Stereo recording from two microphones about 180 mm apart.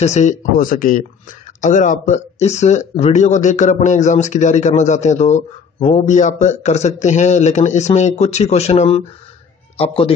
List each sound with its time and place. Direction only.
0.0 s speech: 40° left (ahead or behind)